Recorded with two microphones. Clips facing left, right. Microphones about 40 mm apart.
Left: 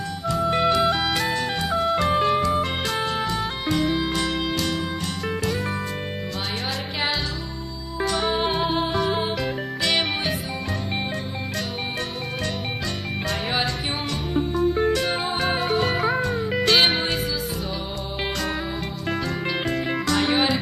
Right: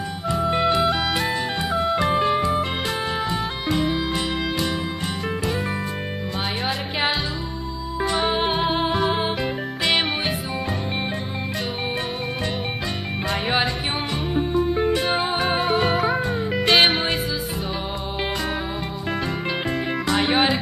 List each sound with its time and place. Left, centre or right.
8.1 s music: right
13.3 s music: right
20.1 s music: right